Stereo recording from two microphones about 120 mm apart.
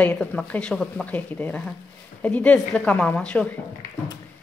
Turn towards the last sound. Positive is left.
turn(degrees=10)  # may be behind; listen again after turning